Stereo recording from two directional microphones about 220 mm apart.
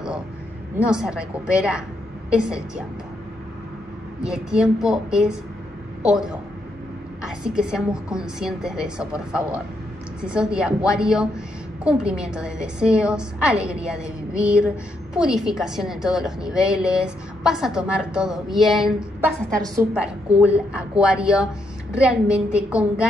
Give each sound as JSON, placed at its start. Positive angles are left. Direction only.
{"t": 0.7, "sound": "a woman's voice", "side_deg": -5}
{"t": 4.2, "sound": "a woman's voice", "side_deg": -5}
{"t": 19.6, "sound": "a woman's voice", "side_deg": -15}